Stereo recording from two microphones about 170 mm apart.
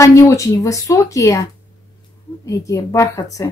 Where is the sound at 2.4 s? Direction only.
20° left (ahead or behind).